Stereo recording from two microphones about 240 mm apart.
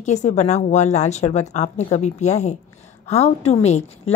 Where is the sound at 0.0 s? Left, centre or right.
Left.